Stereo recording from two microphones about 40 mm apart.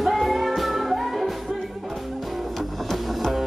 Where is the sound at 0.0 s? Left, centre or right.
Centre.